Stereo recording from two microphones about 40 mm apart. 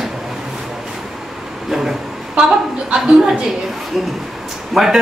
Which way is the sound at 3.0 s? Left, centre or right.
Right.